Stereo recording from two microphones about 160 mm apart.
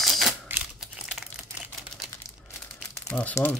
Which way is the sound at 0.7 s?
Centre (ahead or behind).